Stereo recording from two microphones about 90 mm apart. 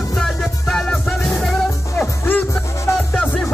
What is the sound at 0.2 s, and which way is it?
Music, 5° left (ahead or behind).